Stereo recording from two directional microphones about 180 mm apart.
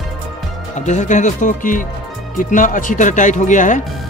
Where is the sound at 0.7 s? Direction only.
40° left (ahead or behind).